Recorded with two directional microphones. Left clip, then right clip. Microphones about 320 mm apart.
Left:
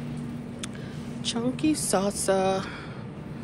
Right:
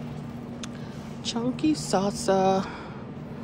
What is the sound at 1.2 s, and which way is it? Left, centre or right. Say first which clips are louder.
Speech: even; centre.